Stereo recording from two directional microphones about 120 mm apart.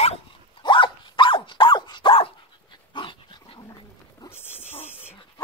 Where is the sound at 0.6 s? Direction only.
45° left (ahead or behind).